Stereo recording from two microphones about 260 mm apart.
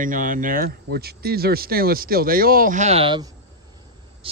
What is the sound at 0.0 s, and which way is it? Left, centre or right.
A man's voice, right.